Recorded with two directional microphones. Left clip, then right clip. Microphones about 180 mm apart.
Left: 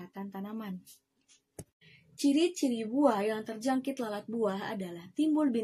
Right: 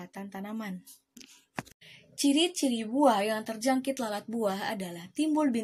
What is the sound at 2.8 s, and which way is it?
A woman's voice, 25° right (ahead or behind).